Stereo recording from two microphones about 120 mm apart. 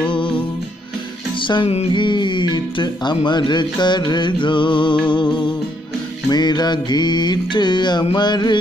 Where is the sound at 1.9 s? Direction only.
40° left (ahead or behind).